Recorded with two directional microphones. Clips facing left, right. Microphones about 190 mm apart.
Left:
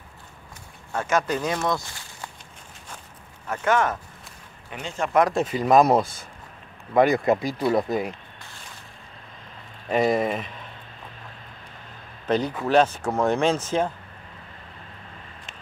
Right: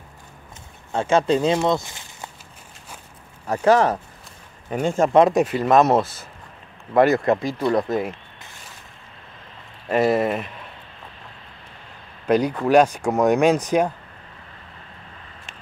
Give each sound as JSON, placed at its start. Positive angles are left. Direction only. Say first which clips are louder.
{"t": 0.9, "sound": "speech", "louder": "right 6 dB", "side_deg": -30}
{"t": 3.4, "sound": "speech", "louder": "right 6 dB", "side_deg": -35}
{"t": 5.1, "sound": "speech", "louder": "right 4 dB", "side_deg": -25}
{"t": 5.4, "sound": "speech", "louder": "right 1 dB", "side_deg": -5}
{"t": 9.8, "sound": "speech", "louder": "right 3 dB", "side_deg": -5}
{"t": 12.3, "sound": "speech", "louder": "right 5 dB", "side_deg": -10}